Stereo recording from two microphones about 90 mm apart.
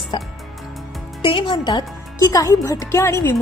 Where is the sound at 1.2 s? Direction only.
65° left (ahead or behind).